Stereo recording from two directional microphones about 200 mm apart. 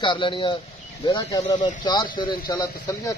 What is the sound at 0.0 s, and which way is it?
Speech, 25° left (ahead or behind).